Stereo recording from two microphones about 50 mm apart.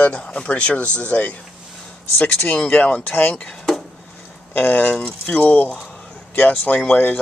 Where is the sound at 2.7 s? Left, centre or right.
Left.